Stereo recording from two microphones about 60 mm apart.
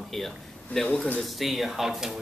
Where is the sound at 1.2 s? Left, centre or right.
Centre.